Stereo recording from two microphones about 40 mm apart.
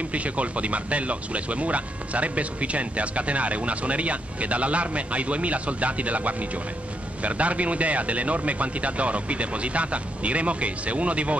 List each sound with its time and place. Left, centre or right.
0.1 s speech: right